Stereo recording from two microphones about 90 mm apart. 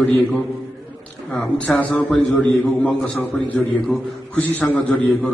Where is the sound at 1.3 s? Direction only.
15° left (ahead or behind).